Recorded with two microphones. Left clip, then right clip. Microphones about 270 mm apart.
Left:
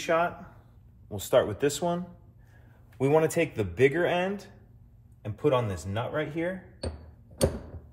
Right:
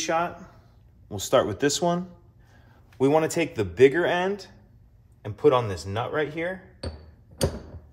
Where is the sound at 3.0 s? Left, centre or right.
Right.